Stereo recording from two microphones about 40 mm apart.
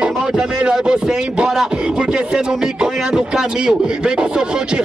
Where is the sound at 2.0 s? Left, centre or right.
Centre.